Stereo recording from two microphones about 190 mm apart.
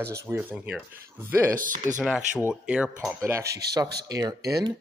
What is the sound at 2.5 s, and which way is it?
Speech, 5° right (ahead or behind).